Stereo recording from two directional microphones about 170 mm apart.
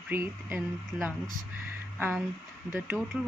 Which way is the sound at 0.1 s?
10° right (ahead or behind).